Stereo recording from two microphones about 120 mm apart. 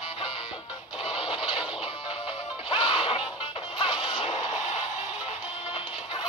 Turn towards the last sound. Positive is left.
turn(degrees=65)  # may be behind; listen again after turning